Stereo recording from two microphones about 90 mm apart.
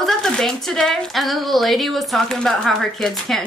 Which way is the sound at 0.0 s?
5° left (ahead or behind).